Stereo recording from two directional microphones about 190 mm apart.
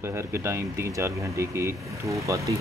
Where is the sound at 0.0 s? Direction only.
15° right (ahead or behind).